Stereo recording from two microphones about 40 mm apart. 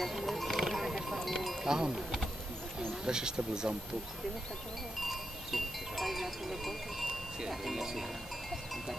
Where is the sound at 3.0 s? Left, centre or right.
Centre.